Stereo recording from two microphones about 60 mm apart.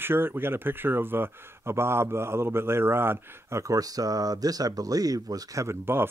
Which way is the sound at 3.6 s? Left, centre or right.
Right.